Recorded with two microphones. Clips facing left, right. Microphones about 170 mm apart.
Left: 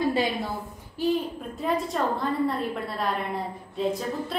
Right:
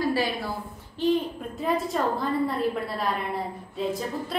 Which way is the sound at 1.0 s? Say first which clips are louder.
Right 1 dB; 10° left (ahead or behind).